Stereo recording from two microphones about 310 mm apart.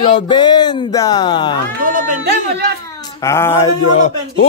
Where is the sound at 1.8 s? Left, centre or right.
Right.